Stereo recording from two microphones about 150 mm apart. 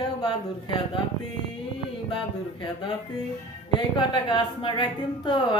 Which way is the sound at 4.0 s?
35° left (ahead or behind).